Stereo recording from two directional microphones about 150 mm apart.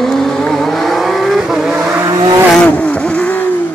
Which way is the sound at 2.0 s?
25° right (ahead or behind).